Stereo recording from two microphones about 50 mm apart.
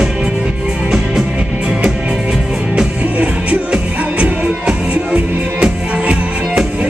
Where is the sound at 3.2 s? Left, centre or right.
Right.